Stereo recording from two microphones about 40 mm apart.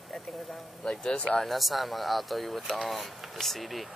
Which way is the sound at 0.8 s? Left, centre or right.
Centre.